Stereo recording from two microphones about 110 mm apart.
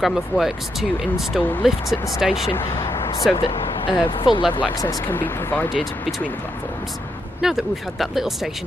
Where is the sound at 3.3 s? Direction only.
50° left (ahead or behind).